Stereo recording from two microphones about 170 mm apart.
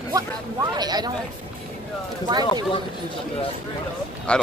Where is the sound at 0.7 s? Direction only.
25° right (ahead or behind).